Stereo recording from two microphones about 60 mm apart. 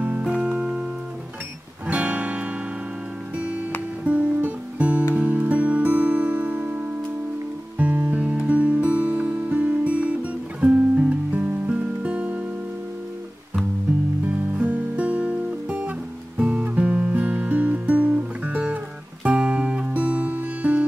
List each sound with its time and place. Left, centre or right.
0.2 s music: centre
1.9 s music: right
4.0 s music: right
14.2 s music: right